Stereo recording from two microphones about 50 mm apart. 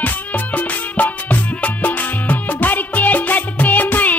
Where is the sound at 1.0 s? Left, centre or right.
Left.